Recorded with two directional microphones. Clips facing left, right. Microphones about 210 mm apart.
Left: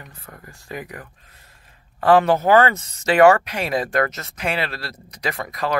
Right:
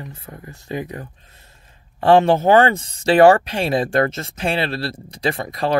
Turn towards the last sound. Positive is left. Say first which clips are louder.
# right 4 dB
turn(degrees=-30)  # may be behind; listen again after turning